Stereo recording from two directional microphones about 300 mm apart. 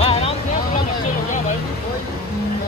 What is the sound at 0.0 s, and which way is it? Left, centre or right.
Vehicle, centre.